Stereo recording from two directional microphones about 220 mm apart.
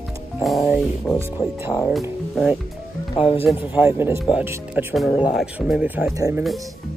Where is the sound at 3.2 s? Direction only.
25° left (ahead or behind).